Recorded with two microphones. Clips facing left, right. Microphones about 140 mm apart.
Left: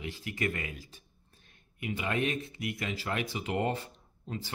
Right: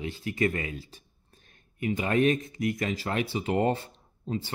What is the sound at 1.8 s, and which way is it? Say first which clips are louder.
Speech: right 7 dB; 40° right (ahead or behind).